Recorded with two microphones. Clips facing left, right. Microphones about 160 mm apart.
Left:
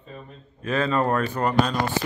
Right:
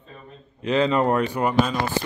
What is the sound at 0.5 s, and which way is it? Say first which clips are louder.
Speech: right 3 dB; 20° right (ahead or behind).